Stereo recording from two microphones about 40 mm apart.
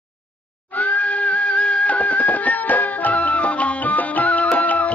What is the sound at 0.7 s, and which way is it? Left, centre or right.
Music, left.